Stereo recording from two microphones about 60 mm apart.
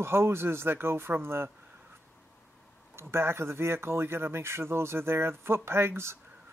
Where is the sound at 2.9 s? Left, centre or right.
Right.